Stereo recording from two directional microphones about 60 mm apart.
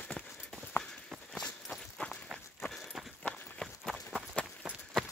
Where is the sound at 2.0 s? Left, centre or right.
Left.